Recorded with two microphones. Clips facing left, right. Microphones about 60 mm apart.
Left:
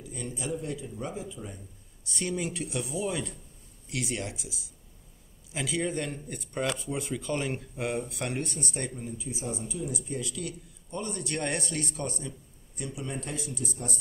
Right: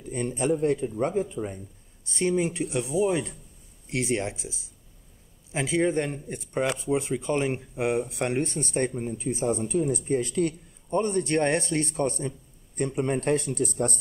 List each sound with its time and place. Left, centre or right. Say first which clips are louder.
0.0 s speech: right 9 dB; right
2.0 s speech: right 7 dB; right